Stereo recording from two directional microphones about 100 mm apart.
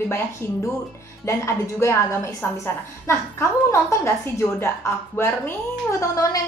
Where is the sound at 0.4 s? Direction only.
25° left (ahead or behind).